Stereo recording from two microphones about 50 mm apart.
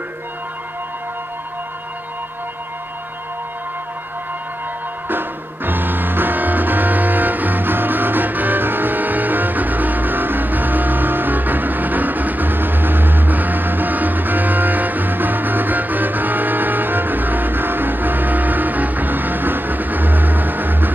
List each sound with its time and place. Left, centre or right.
5.0 s music: right